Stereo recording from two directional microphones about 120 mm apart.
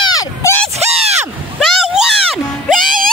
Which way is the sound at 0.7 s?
60° right (ahead or behind).